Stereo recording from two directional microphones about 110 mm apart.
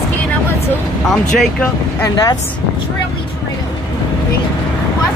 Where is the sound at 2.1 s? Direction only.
35° left (ahead or behind).